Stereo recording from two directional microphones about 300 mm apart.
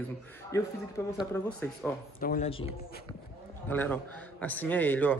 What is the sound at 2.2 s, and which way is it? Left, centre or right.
Speech, left.